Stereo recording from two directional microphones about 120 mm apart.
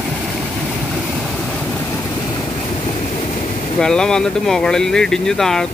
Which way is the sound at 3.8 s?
5° left (ahead or behind).